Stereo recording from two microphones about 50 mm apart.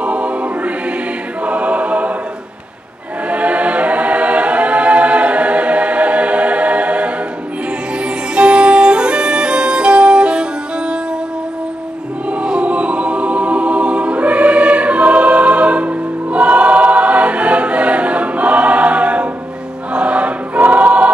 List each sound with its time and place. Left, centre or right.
0.0 s music: right
1.4 s choir: right
3.3 s choir: right
8.0 s music: right
12.4 s choir: right